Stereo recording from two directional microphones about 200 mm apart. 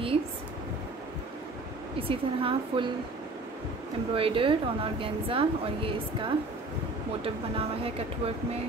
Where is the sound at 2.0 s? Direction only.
25° right (ahead or behind).